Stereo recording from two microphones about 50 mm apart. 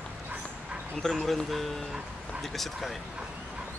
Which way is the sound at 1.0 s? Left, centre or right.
Centre.